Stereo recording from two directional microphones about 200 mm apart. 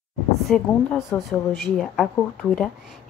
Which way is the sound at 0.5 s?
5° left (ahead or behind).